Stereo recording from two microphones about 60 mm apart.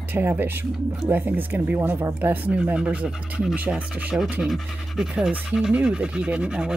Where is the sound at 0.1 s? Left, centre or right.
Right; by 3.5 s centre.